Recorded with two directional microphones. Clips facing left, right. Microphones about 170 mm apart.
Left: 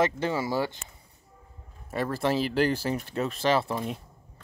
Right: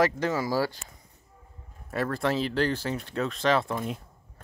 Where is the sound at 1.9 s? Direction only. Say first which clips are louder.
Even; 5° left (ahead or behind).